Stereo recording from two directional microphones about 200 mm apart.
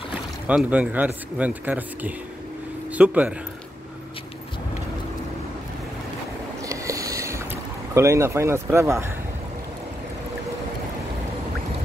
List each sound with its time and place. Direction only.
0.1 s a man's voice: 5° right (ahead or behind)
6.6 s boat: 15° right (ahead or behind)
7.9 s speech: 15° right (ahead or behind)